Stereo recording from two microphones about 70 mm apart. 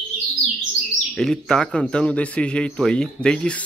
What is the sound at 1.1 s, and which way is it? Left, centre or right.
A man's voice, centre.